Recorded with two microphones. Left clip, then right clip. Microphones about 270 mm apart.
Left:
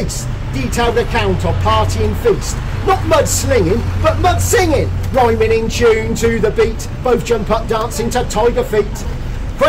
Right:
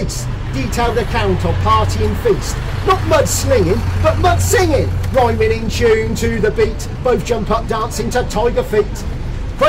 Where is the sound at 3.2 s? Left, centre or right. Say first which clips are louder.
Even; centre.